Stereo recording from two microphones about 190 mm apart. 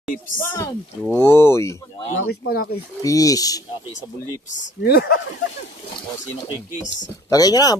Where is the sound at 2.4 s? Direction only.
55° left (ahead or behind).